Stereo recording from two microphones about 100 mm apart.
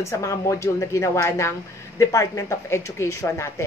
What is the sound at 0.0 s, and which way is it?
A woman's voice, 30° left (ahead or behind).